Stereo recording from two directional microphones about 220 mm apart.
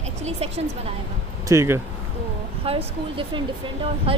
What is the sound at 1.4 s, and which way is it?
Speech, 10° right (ahead or behind).